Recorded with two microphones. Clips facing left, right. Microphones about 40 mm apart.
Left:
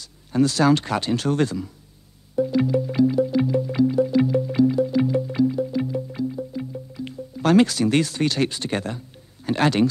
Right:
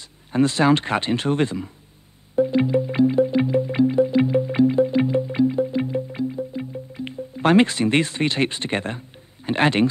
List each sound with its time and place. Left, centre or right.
0.0 s speech: right
2.3 s music: right
9.5 s speech: right